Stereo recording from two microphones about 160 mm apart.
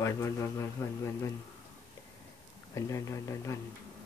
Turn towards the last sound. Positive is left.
turn(degrees=20)  # may be behind; listen again after turning